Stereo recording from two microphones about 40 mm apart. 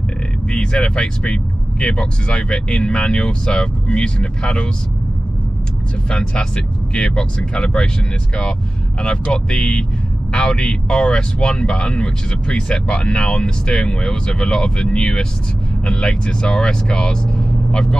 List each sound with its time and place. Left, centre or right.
0.5 s speech: left
6.0 s speech: left
9.0 s speech: left